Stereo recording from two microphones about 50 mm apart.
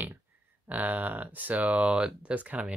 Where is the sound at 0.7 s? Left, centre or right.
Right.